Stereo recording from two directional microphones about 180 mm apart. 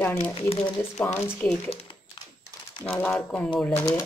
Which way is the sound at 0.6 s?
10° left (ahead or behind).